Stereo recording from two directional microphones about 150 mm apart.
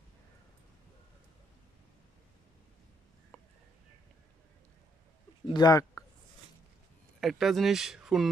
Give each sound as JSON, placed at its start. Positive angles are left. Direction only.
{"t": 3.3, "sound": "a sound", "side_deg": 15}
{"t": 5.5, "sound": "speech", "side_deg": 25}
{"t": 7.2, "sound": "speech", "side_deg": 0}